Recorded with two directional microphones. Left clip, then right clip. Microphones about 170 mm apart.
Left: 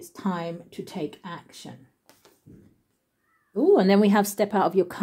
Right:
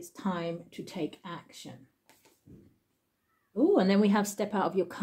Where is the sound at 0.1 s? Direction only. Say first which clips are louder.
Left 4 dB; 35° left (ahead or behind).